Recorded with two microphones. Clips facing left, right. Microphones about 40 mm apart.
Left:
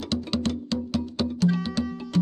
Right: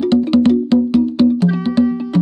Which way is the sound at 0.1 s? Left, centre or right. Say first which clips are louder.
Right 14 dB; right.